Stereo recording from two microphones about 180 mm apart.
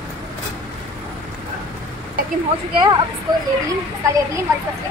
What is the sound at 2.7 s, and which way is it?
Speech, 25° right (ahead or behind).